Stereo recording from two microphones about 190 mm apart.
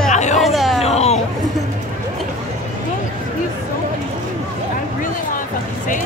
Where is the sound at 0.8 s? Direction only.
35° left (ahead or behind).